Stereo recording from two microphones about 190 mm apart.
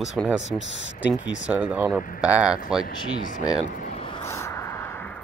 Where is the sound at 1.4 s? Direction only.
5° right (ahead or behind).